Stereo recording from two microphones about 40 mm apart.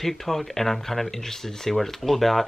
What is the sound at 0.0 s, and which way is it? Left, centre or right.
Speech, centre.